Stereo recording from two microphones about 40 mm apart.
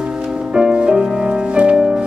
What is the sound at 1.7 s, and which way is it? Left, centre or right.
Music, centre.